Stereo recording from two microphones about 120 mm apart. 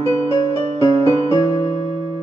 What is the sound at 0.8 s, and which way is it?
Music, 35° left (ahead or behind).